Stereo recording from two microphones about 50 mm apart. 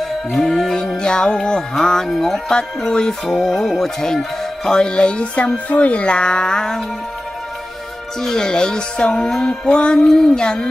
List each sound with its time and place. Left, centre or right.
0.3 s speech: centre
2.9 s speech: centre
8.2 s speech: centre
9.1 s music: centre
10.0 s speech: centre